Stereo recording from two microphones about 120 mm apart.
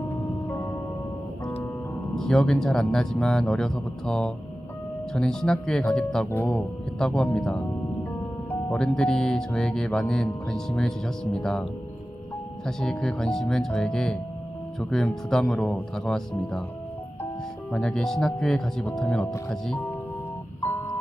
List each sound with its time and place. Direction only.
0.5 s music: 20° left (ahead or behind)
2.1 s speech: 5° left (ahead or behind)
12.6 s speech: 5° left (ahead or behind)
17.6 s speech: 5° left (ahead or behind)
20.6 s a sound: 20° left (ahead or behind)